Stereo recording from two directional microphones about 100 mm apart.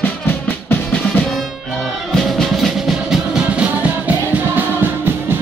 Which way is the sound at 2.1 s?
5° left (ahead or behind).